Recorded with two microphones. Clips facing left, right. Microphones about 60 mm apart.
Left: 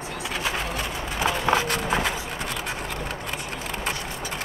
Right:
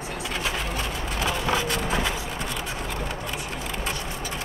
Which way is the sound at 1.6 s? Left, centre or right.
Left.